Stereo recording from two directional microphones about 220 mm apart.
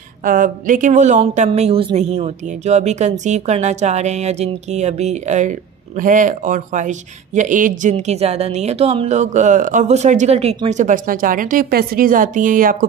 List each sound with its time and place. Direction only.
0.2 s a woman's voice: 35° right (ahead or behind)